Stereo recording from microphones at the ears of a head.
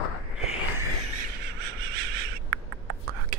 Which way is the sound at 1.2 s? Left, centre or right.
Right.